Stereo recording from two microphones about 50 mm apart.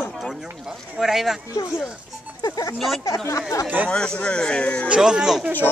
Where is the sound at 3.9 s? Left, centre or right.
Centre.